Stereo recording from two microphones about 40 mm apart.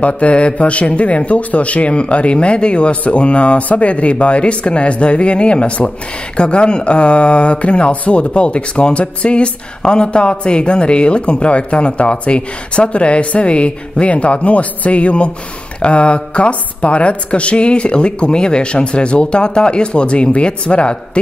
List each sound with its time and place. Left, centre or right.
0.0 s a woman's voice: left